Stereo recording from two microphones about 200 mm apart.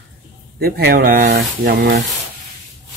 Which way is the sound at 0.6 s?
55° right (ahead or behind).